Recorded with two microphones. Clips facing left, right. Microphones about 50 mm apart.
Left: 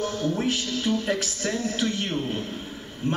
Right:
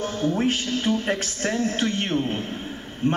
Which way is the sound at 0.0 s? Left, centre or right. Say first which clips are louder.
Right 2 dB; right.